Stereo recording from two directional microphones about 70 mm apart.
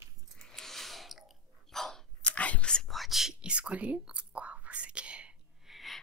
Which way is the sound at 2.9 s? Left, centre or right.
Centre.